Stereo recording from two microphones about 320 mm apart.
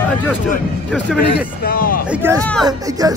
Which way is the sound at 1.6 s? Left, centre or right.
Left.